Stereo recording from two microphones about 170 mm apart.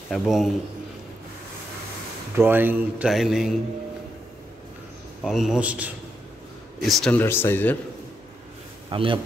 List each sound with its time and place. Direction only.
0.1 s a man's voice: centre (ahead or behind)
2.3 s speech: 10° right (ahead or behind)
5.2 s a man's voice: 5° right (ahead or behind)
7.2 s speech: 15° left (ahead or behind)
8.9 s speech: 30° right (ahead or behind)